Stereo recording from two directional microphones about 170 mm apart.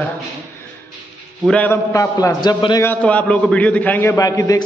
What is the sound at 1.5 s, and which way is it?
A man's voice, 10° left (ahead or behind).